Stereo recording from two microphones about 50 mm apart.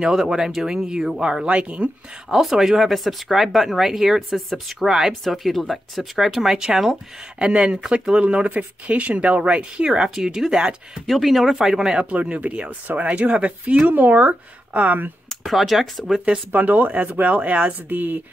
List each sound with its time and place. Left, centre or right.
0.0 s speech: centre
1.4 s speech: right
2.2 s speech: centre
8.2 s speech: right
9.8 s speech: centre
11.1 s speech: centre
12.0 s speech: right
15.2 s speech: centre
16.5 s speech: right